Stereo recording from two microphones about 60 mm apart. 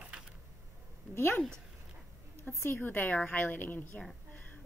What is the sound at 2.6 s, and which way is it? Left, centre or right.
A woman's voice, left.